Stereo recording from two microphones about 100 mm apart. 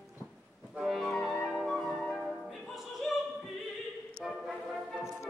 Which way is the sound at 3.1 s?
Centre (ahead or behind).